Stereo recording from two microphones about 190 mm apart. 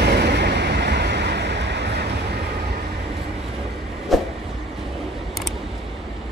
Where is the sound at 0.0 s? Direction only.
60° right (ahead or behind).